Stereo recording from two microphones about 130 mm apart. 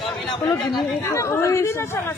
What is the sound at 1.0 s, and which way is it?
Speech, 20° left (ahead or behind).